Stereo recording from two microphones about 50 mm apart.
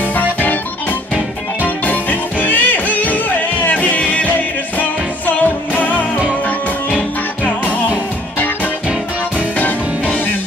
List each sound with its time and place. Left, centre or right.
0.0 s music: left